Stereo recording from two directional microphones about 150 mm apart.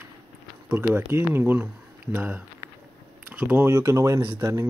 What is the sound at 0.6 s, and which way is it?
Speech, 15° right (ahead or behind).